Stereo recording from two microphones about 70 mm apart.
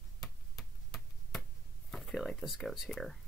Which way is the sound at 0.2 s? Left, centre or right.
Centre.